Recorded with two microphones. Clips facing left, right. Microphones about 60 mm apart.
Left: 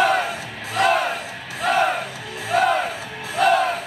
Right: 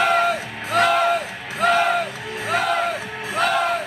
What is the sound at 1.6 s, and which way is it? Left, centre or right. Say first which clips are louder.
Music: right 3 dB; right.